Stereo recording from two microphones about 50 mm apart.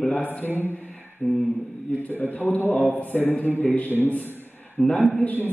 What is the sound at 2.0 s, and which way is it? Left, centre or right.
A man's voice, left.